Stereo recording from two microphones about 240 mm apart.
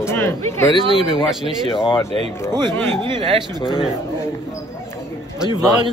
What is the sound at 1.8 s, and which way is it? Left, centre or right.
Speech, left.